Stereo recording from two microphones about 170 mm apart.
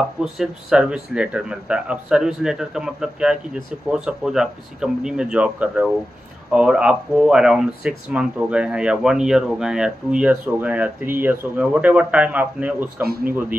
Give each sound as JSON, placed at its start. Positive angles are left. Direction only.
{"t": 0.2, "sound": "speech", "side_deg": -5}
{"t": 13.0, "sound": "a man's voice", "side_deg": -65}
{"t": 13.3, "sound": "speech", "side_deg": -10}